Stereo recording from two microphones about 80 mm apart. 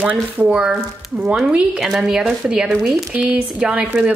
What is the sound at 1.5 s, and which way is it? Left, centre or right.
Speech, centre.